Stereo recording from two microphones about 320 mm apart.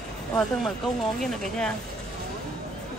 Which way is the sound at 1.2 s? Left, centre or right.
Centre.